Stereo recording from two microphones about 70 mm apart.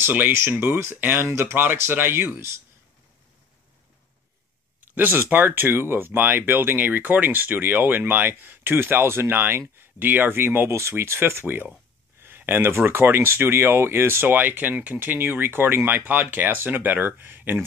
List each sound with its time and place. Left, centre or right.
0.0 s speech: right
4.9 s speech: right